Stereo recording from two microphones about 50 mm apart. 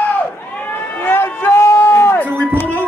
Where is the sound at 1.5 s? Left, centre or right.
Left.